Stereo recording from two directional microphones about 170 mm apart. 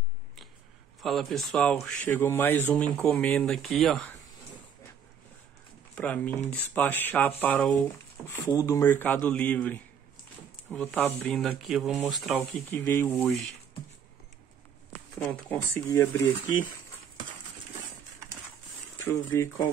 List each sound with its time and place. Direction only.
1.0 s speech: centre (ahead or behind)
5.9 s speech: 10° left (ahead or behind)
12.7 s speech: 10° left (ahead or behind)
15.5 s speech: 15° left (ahead or behind)
19.0 s speech: 15° left (ahead or behind)